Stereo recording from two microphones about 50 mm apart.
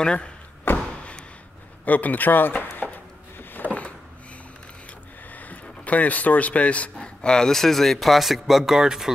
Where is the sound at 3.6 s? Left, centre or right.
Right.